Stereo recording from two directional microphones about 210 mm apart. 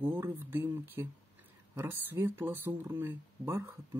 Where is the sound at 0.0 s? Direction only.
10° right (ahead or behind).